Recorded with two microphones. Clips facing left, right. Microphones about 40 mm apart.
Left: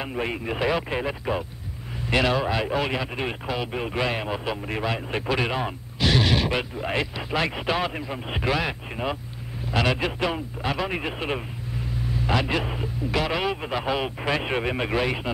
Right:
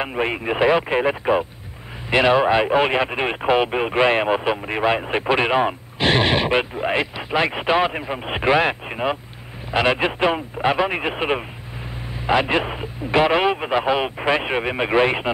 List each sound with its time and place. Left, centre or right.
0.0 s speech: right
14.9 s speech: right